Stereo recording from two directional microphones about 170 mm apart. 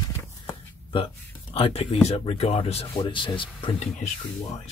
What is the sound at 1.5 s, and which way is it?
Speech, 35° left (ahead or behind).